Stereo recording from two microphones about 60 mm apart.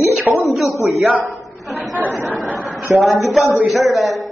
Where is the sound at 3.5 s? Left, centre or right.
Centre.